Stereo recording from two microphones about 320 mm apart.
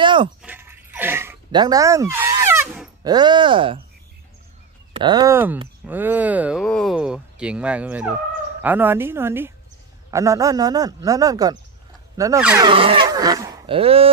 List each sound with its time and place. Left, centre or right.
0.0 s a sound: centre
0.4 s dog: centre
4.9 s speech: centre